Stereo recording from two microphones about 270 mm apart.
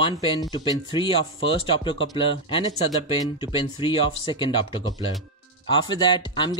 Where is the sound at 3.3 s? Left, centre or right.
Centre.